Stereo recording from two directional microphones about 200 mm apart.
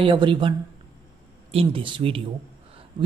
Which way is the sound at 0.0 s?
25° right (ahead or behind).